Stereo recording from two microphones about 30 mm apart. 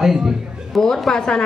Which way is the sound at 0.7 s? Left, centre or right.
Centre.